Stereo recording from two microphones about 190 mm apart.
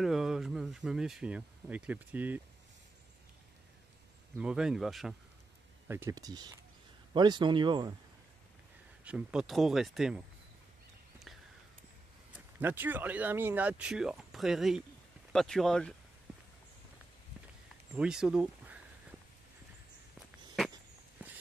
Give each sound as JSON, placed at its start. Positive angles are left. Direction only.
{"t": 0.0, "sound": "speech", "side_deg": 0}
{"t": 4.4, "sound": "speech", "side_deg": -5}
{"t": 5.9, "sound": "speech", "side_deg": -15}
{"t": 9.0, "sound": "speech", "side_deg": -5}
{"t": 12.5, "sound": "speech", "side_deg": -10}
{"t": 17.9, "sound": "speech", "side_deg": -5}